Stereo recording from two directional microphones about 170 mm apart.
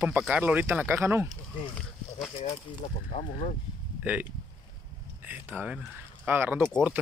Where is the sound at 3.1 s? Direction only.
35° left (ahead or behind).